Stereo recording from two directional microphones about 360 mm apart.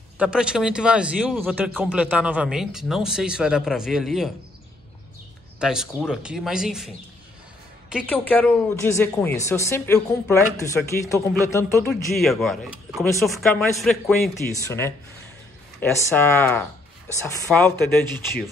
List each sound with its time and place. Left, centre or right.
0.2 s speech: centre
5.6 s speech: centre
7.9 s speech: centre
14.7 s speech: centre